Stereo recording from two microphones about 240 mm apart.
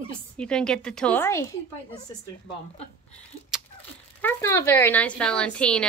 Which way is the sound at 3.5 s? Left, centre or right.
Centre.